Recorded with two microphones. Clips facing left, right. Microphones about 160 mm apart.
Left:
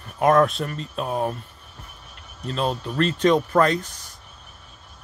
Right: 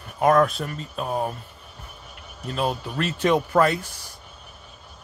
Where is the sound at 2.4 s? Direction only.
10° right (ahead or behind).